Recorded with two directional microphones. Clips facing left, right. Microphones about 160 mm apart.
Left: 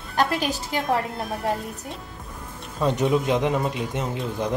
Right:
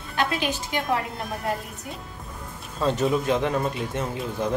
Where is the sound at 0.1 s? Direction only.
40° left (ahead or behind).